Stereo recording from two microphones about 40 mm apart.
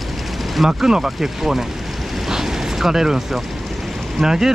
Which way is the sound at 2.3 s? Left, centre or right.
Centre.